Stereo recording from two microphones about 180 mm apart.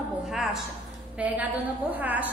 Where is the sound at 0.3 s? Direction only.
Centre (ahead or behind).